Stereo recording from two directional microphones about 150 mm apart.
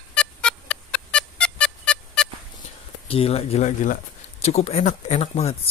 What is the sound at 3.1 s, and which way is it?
Speech, 40° left (ahead or behind).